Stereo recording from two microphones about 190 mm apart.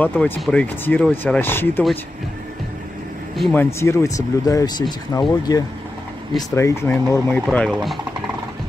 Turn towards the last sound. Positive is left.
turn(degrees=5)  # may be behind; listen again after turning